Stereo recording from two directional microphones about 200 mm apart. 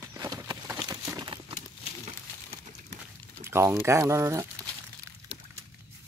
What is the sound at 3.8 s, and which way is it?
Speech, 15° right (ahead or behind).